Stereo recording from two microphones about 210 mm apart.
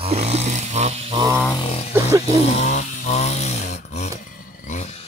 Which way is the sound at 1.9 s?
15° right (ahead or behind).